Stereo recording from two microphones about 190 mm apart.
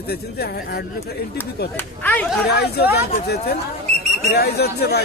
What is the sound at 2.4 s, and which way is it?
Speech, 60° left (ahead or behind).